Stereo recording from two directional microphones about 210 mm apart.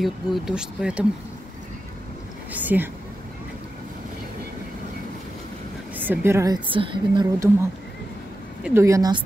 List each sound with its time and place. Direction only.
0.0 s speech: centre (ahead or behind)
2.5 s a woman's voice: 10° right (ahead or behind)
5.9 s a woman's voice: 10° right (ahead or behind)
8.6 s a woman's voice: 15° right (ahead or behind)